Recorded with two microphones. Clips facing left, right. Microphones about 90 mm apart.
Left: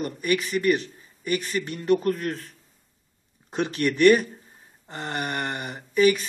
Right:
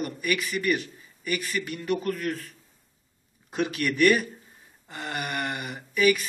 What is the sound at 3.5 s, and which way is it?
Speech, 30° left (ahead or behind).